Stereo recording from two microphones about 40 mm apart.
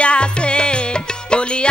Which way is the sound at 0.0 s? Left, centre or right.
Left.